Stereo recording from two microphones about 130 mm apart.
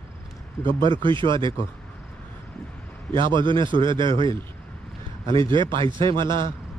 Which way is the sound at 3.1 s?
40° right (ahead or behind).